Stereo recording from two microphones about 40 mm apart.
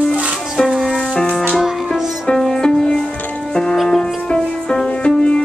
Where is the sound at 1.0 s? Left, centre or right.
Left.